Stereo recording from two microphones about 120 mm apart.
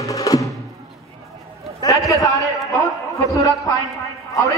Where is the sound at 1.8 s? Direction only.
25° left (ahead or behind).